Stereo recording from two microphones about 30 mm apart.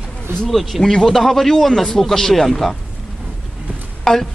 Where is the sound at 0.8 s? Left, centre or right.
Centre.